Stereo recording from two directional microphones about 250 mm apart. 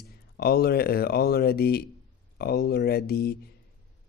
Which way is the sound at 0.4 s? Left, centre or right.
Left.